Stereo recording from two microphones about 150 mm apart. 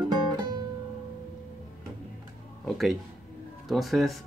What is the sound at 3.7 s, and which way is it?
Speech, centre (ahead or behind).